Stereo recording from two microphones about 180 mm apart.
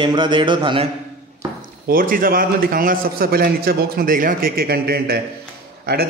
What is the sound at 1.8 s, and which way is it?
A man's voice, 50° right (ahead or behind).